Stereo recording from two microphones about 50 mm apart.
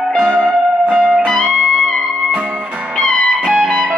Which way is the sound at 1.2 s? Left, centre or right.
Centre.